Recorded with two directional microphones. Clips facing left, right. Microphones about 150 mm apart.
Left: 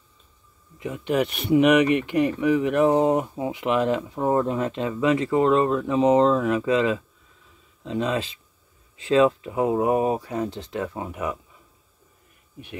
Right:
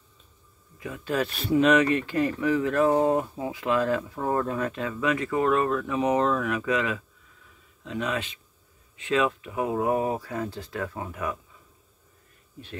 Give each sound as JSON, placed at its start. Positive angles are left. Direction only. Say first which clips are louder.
{"t": 0.7, "sound": "speech", "louder": "left 4 dB", "side_deg": 20}